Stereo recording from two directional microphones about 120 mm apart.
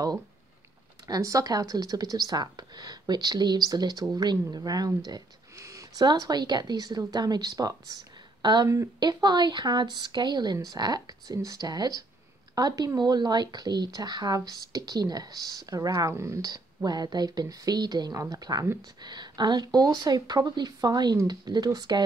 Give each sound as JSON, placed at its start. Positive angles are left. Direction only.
{"t": 1.0, "sound": "speech", "side_deg": -30}